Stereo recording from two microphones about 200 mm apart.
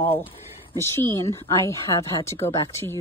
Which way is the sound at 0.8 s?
10° left (ahead or behind).